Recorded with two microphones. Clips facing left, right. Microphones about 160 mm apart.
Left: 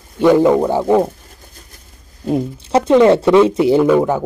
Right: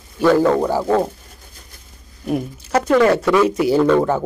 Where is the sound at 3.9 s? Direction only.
10° left (ahead or behind).